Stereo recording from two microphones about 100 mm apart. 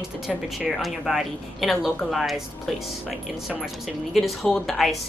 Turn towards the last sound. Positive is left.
turn(degrees=0)  # may be behind; listen again after turning